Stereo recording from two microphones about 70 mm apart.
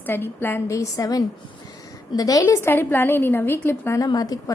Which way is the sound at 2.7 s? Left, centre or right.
Left.